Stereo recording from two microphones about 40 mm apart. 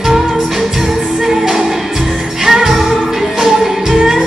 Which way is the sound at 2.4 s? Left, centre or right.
Centre.